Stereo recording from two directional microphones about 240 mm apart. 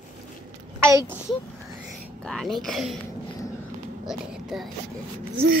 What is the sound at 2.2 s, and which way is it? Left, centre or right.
Speech, centre.